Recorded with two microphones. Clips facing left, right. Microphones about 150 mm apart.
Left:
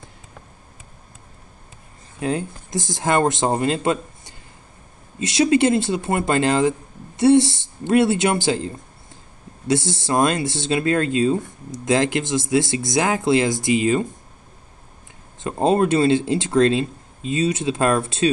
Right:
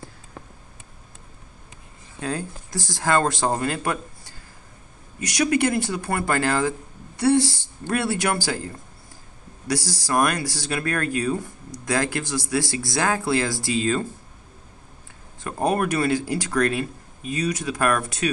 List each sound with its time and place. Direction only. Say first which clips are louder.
2.1 s speech: left 5 dB; 20° left (ahead or behind)
15.4 s speech: left 5 dB; 20° left (ahead or behind)